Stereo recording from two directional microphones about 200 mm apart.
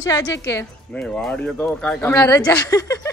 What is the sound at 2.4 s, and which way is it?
Speech, 20° left (ahead or behind).